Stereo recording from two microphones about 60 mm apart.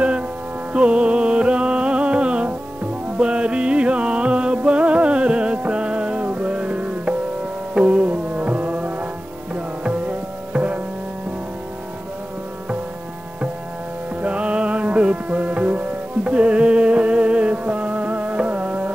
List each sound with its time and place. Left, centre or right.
0.7 s music: centre
14.2 s music: centre